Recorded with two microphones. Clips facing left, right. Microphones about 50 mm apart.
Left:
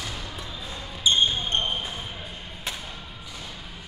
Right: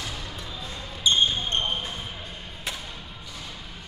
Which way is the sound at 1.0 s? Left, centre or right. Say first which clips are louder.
Even; centre.